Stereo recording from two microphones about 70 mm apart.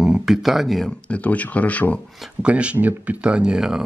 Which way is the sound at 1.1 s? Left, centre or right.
Centre.